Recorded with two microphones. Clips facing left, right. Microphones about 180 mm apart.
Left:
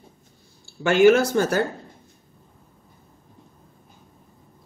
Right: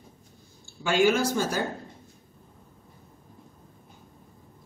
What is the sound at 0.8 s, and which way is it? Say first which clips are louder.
Speech: left 7 dB; 60° left (ahead or behind).